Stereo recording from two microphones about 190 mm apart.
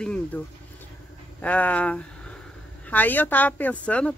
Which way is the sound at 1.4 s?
5° left (ahead or behind).